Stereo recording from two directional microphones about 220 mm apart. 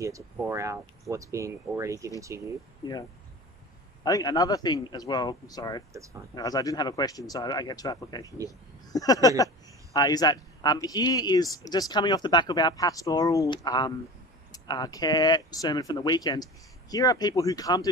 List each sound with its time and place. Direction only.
0.0 s speech: 15° right (ahead or behind)
4.0 s speech: 15° left (ahead or behind)